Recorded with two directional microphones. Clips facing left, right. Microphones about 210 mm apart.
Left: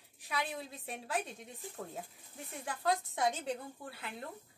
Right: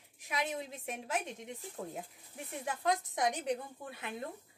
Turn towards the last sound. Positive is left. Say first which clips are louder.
# right 1 dB
turn(degrees=-20)  # may be behind; listen again after turning